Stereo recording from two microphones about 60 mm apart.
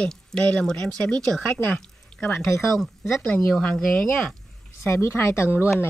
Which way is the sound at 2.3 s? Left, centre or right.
Left.